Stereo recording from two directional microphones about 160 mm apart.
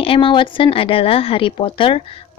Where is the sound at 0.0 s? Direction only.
35° left (ahead or behind).